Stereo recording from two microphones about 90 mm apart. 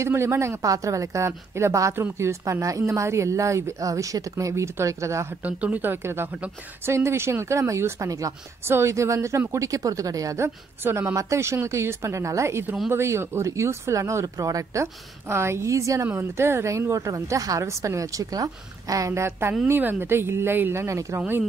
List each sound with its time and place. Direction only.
0.0 s speech: 30° right (ahead or behind)
5.4 s speech: 15° right (ahead or behind); by 21.2 s 35° right (ahead or behind)